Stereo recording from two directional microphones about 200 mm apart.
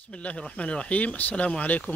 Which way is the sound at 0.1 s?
5° left (ahead or behind).